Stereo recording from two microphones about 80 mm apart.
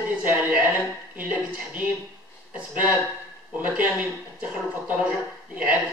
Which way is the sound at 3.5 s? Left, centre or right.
Right.